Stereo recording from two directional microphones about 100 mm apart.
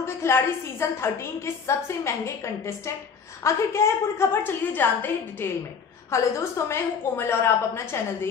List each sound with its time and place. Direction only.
0.0 s a woman's voice: 25° left (ahead or behind)